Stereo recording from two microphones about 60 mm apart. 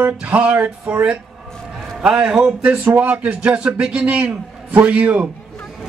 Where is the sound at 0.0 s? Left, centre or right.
Right.